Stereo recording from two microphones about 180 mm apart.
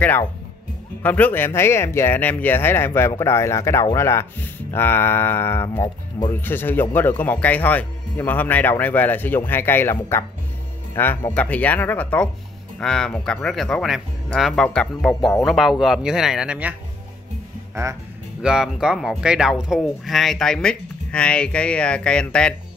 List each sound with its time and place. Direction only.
1.0 s speech: 10° left (ahead or behind); by 16.7 s 5° right (ahead or behind)
18.4 s speech: 5° right (ahead or behind)